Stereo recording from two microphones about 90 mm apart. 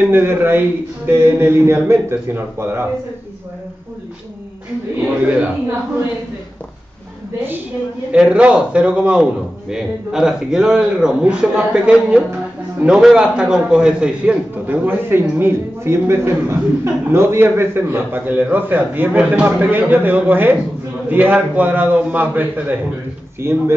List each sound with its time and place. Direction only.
0.1 s a man's voice: 25° right (ahead or behind)
4.9 s a man's voice: 15° right (ahead or behind)
8.1 s a man's voice: 10° right (ahead or behind)
14.9 s a man's voice: 25° right (ahead or behind)